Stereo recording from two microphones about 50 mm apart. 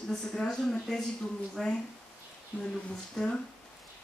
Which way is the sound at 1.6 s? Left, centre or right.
Centre.